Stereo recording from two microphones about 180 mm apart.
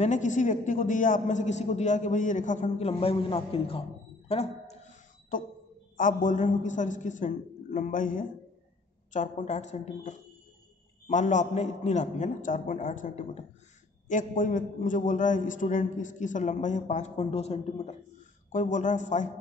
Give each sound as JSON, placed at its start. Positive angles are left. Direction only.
{"t": 0.0, "sound": "a man's voice", "side_deg": 45}
{"t": 2.9, "sound": "a woman's voice", "side_deg": 30}
{"t": 4.3, "sound": "a sound", "side_deg": 35}
{"t": 5.9, "sound": "a man's voice", "side_deg": 45}